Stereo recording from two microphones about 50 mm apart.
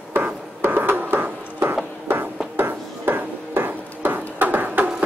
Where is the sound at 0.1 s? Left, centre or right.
Right.